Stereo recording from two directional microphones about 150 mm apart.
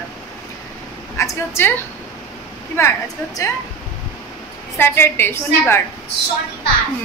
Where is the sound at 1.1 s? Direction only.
20° left (ahead or behind).